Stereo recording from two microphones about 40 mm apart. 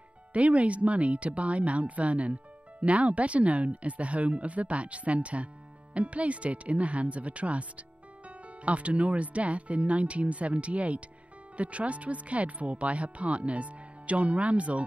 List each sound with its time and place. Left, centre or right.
0.3 s speech: right